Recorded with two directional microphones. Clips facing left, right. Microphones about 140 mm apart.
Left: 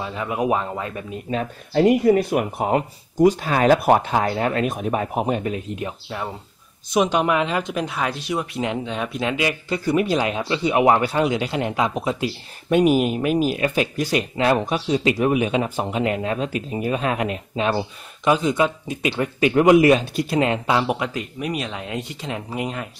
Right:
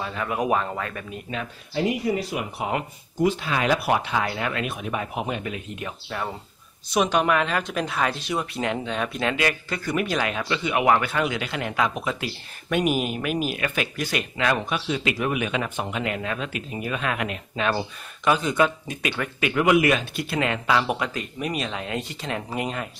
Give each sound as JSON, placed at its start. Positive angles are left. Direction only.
{"t": 0.0, "sound": "speech", "side_deg": 15}
{"t": 1.7, "sound": "speech", "side_deg": 50}
{"t": 6.0, "sound": "speech", "side_deg": 10}
{"t": 9.7, "sound": "speech", "side_deg": 25}